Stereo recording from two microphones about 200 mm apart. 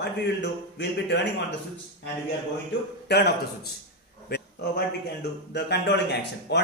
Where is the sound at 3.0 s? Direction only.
55° left (ahead or behind).